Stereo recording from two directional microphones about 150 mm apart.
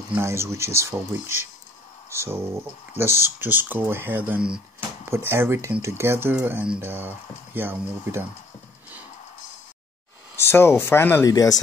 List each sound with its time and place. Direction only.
0.1 s speech: 15° right (ahead or behind)
10.3 s speech: 15° left (ahead or behind)